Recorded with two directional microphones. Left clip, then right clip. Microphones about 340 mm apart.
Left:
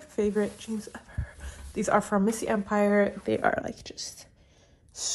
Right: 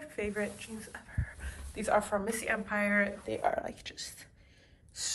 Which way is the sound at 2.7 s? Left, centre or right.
Centre.